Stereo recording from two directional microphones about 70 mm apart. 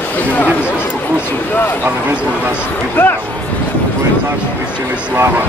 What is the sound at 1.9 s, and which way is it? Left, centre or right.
Speech, right.